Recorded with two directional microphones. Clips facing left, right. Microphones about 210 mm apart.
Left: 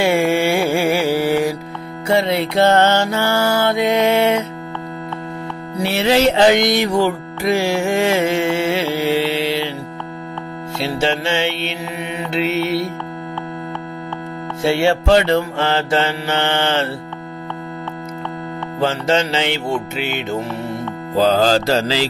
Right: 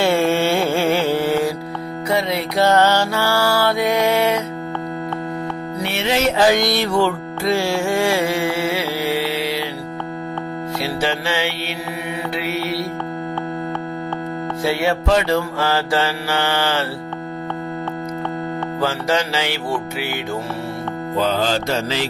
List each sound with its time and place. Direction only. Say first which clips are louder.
0.0 s music: left 1 dB; 15° left (ahead or behind)
2.0 s music: left 4 dB; 25° left (ahead or behind)
5.8 s music: left 6 dB; 35° left (ahead or behind)
10.8 s music: left 4 dB; 25° left (ahead or behind)
14.6 s music: left 4 dB; 30° left (ahead or behind)
18.8 s music: left 4 dB; 25° left (ahead or behind)
21.1 s music: left 5 dB; 35° left (ahead or behind)